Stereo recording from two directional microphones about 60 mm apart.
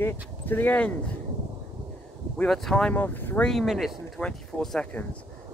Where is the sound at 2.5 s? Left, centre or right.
Centre.